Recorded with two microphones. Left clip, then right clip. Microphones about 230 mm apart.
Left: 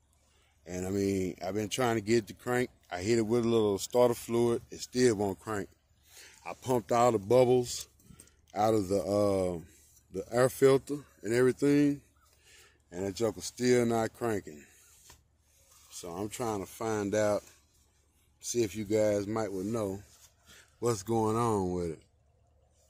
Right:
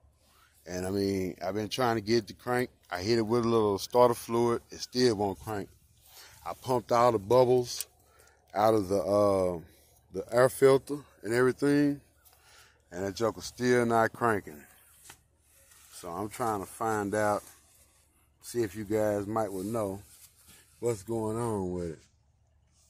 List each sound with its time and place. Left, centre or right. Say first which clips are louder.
0.7 s speech: right 1 dB; centre
16.0 s speech: right 3 dB; centre
18.5 s speech: left 1 dB; centre
18.9 s speech: even; centre
20.5 s speech: even; left
21.7 s speech: left 1 dB; centre